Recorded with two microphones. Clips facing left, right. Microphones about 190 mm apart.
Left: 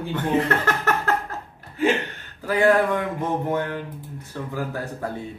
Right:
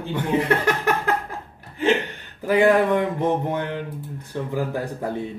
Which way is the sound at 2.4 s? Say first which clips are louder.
Right 2 dB; 20° right (ahead or behind).